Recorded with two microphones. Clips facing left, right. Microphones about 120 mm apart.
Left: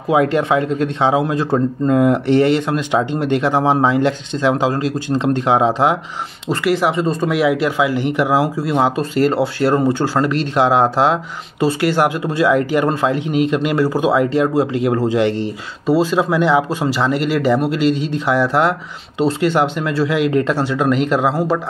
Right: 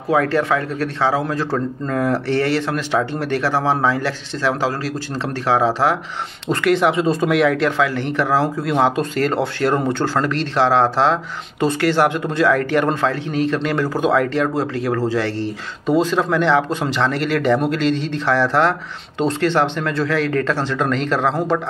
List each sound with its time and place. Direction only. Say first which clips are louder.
0.1 s speech: left 3 dB; 20° left (ahead or behind)
6.5 s speech: even; 5° left (ahead or behind)